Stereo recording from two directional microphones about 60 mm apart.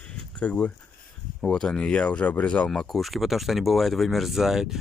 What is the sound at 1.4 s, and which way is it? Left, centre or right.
Speech, centre.